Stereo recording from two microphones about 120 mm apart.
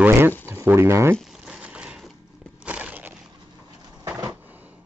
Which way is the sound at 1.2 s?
5° right (ahead or behind).